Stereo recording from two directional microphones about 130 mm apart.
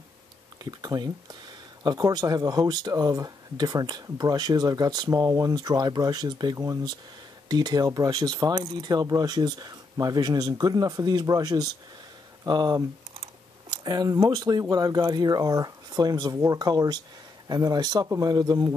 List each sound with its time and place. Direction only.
0.7 s speech: 30° right (ahead or behind)